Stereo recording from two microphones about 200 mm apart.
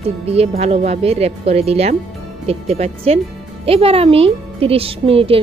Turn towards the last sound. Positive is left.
turn(degrees=-30)  # may be behind; listen again after turning